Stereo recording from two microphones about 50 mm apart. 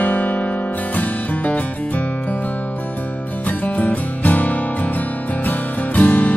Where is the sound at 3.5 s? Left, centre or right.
Left.